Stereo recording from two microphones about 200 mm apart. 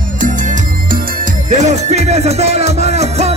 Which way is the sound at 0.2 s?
40° right (ahead or behind).